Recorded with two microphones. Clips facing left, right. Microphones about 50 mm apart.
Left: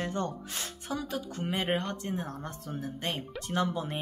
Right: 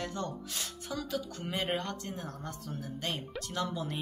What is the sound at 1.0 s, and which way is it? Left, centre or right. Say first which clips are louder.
Speech: left 2 dB; left.